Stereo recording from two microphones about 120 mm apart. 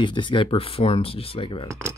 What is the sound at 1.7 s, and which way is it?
Speech, 25° right (ahead or behind).